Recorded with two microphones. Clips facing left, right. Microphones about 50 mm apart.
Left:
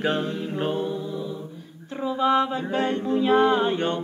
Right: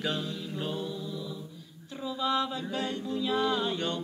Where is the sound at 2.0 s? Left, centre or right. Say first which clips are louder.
Left 8 dB; left.